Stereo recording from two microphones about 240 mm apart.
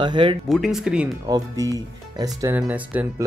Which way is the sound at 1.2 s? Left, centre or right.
Centre.